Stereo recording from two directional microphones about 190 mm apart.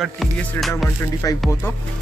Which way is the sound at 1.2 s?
15° left (ahead or behind).